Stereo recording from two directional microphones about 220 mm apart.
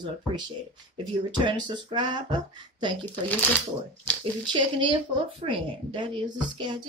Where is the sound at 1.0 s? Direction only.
20° right (ahead or behind).